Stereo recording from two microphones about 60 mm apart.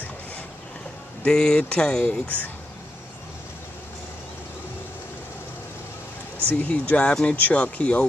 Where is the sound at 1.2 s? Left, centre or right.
Centre.